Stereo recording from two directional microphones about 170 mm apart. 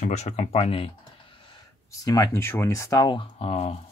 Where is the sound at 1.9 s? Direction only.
20° left (ahead or behind); by 3.7 s 35° left (ahead or behind).